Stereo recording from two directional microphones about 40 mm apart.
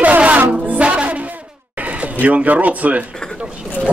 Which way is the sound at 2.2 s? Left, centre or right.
Right.